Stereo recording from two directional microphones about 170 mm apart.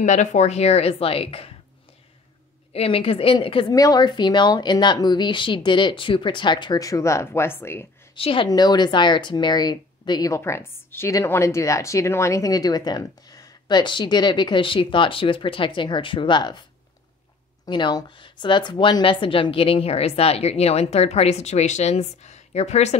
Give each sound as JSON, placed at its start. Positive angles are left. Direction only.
{"t": 0.0, "sound": "a woman's voice", "side_deg": 45}
{"t": 2.7, "sound": "speech", "side_deg": 35}
{"t": 8.1, "sound": "speech", "side_deg": 30}
{"t": 17.6, "sound": "a woman's voice", "side_deg": 25}